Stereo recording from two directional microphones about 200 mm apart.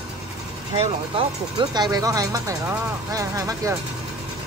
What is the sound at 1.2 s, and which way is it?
Speech, 20° right (ahead or behind).